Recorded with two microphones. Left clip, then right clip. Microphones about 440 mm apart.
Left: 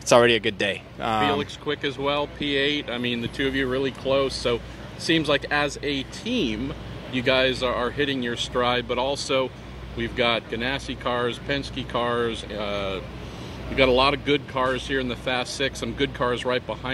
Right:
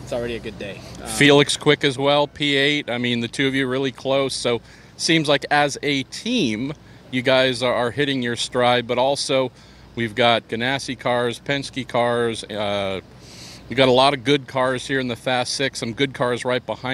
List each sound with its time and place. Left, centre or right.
0.1 s speech: left
1.2 s speech: right